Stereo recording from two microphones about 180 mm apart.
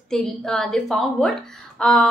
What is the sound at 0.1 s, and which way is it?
Speech, 5° left (ahead or behind).